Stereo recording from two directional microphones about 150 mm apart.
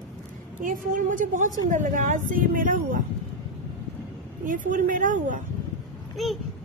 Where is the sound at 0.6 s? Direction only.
65° right (ahead or behind).